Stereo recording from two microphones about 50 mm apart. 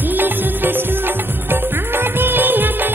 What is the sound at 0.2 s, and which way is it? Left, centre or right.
Music, right.